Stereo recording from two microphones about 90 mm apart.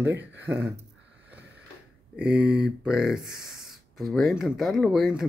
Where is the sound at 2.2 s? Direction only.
15° right (ahead or behind).